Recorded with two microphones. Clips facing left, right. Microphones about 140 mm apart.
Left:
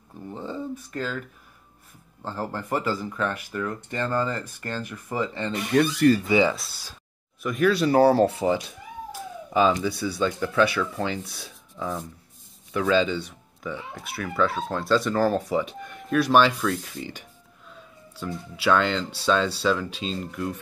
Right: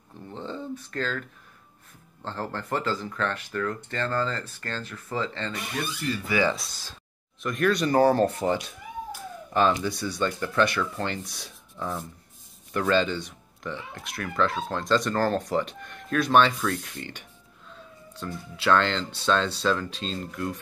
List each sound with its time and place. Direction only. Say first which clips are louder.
0.3 s a sound: left 2 dB; 10° left (ahead or behind)
2.2 s speech: left 2 dB; 10° left (ahead or behind)
5.8 s speech: left 13 dB; 80° left
6.2 s speech: left 4 dB; 20° left (ahead or behind)
6.5 s speech: right 1 dB; 5° left (ahead or behind)